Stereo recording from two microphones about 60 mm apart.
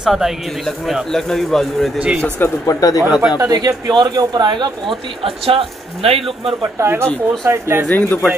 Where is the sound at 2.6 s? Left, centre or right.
Left.